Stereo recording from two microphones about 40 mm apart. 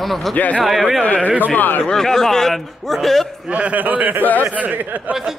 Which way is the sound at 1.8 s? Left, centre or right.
Centre.